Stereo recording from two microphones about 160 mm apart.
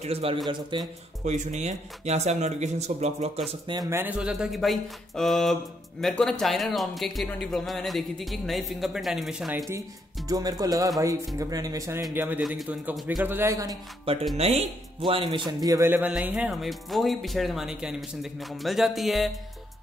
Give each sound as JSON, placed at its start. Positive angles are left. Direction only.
{"t": 0.0, "sound": "a man's voice", "side_deg": -40}
{"t": 0.5, "sound": "music", "side_deg": -30}
{"t": 1.2, "sound": "speech", "side_deg": -45}
{"t": 3.7, "sound": "music", "side_deg": -25}
{"t": 4.0, "sound": "speech", "side_deg": -5}
{"t": 10.2, "sound": "music", "side_deg": -25}
{"t": 12.1, "sound": "a man's voice", "side_deg": -10}
{"t": 14.3, "sound": "speech", "side_deg": -40}